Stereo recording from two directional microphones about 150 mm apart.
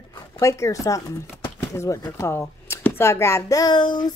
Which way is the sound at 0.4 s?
20° left (ahead or behind).